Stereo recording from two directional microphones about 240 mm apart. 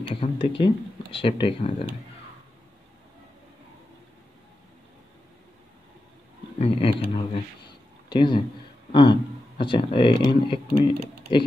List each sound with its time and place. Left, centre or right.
0.1 s speech: left
6.6 s speech: left